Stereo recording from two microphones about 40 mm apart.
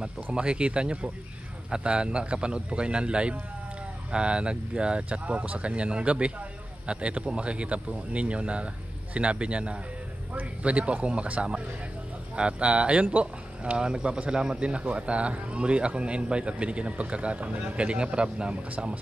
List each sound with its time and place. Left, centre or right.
0.0 s speech: right
14.3 s speech: centre